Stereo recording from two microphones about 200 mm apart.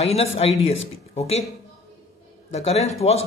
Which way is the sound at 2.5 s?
35° left (ahead or behind).